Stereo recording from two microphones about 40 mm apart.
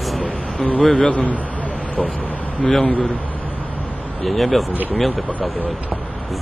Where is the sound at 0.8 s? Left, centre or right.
Centre.